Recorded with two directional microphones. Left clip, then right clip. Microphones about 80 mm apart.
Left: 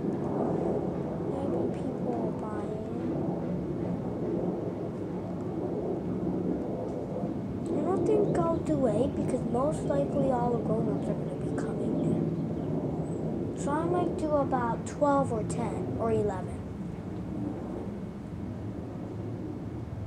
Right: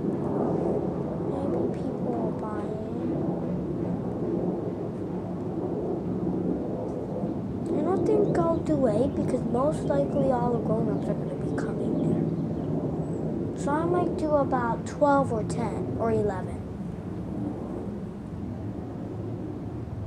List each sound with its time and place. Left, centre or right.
0.2 s a sound: centre
7.8 s speech: centre
13.7 s a woman's voice: centre